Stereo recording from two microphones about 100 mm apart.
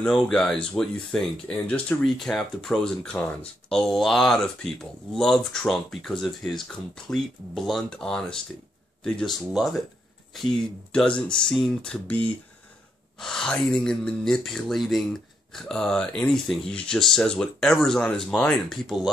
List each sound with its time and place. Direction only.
0.0 s speech: 5° left (ahead or behind)
10.9 s speech: 10° left (ahead or behind)